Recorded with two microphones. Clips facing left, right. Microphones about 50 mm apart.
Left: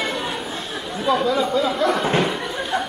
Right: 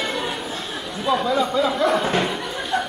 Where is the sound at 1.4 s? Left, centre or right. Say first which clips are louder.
Even; centre.